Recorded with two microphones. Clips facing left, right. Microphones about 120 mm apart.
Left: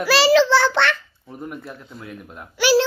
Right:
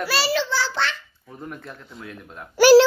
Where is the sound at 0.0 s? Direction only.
90° left; by 0.9 s 60° left (ahead or behind).